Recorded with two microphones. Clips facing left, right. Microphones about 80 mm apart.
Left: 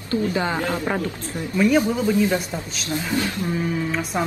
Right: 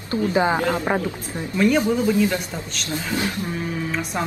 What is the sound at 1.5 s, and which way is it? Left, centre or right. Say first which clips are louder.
Speech: left 1 dB; centre.